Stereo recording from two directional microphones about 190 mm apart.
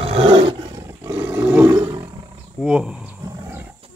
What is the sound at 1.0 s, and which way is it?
Roar, 10° right (ahead or behind).